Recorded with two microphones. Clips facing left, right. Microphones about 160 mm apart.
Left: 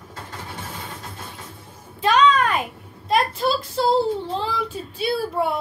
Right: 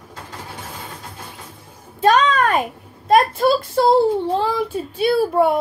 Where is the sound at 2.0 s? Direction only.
45° right (ahead or behind).